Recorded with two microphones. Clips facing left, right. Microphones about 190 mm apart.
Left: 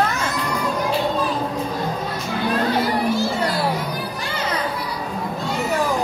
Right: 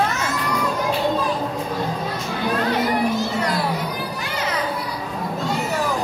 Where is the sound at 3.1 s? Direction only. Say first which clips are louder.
Left 2 dB; 30° left (ahead or behind).